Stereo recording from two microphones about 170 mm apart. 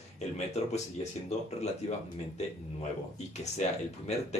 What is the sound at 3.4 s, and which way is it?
Speech, 40° left (ahead or behind).